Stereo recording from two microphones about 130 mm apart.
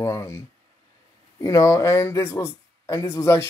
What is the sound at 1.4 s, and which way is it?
Speech, 25° left (ahead or behind).